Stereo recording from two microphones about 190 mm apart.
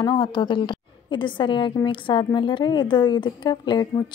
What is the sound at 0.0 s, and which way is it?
A woman's voice, 20° left (ahead or behind).